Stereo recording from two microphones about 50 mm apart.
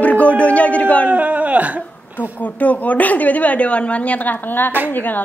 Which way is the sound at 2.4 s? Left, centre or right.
Left.